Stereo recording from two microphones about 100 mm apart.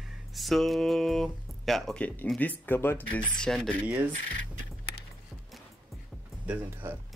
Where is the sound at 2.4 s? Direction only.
20° left (ahead or behind).